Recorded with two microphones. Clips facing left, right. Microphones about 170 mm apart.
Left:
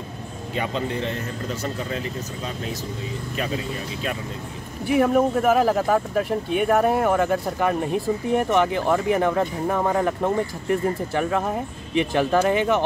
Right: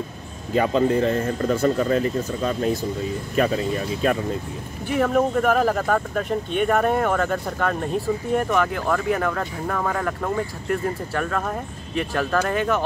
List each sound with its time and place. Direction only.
0.6 s speech: 40° right (ahead or behind)
4.8 s speech: 10° left (ahead or behind)